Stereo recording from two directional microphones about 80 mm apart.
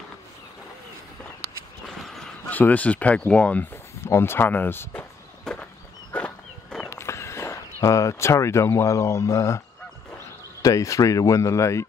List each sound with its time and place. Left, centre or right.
1.9 s a sound: centre
2.5 s speech: left
3.7 s speech: left
5.5 s a sound: centre
6.9 s speech: left
10.6 s speech: left